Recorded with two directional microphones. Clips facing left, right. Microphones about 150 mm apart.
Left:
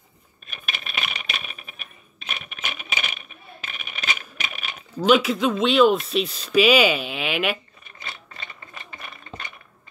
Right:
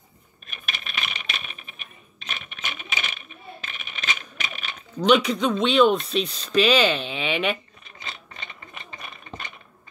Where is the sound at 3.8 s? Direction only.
5° left (ahead or behind).